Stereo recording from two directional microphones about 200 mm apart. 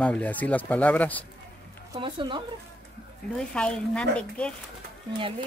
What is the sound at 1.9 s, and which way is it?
Speech, 25° right (ahead or behind).